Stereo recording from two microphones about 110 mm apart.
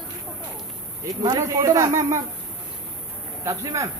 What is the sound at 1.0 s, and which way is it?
Speech, 35° right (ahead or behind).